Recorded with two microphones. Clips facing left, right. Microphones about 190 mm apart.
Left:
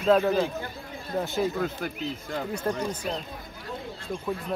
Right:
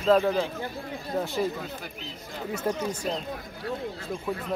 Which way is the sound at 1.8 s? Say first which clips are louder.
Left 8 dB; 50° left (ahead or behind).